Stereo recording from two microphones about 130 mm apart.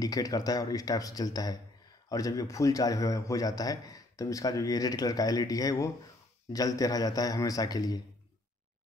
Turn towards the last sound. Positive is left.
turn(degrees=30)  # may be behind; listen again after turning